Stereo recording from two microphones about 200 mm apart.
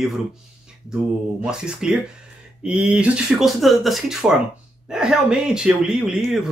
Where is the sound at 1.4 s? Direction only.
5° right (ahead or behind).